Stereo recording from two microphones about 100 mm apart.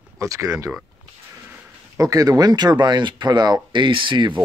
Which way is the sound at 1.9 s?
35° right (ahead or behind).